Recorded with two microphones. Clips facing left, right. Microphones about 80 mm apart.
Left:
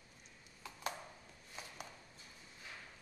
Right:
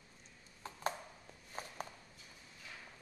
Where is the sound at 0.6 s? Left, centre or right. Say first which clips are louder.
Right 3 dB; right.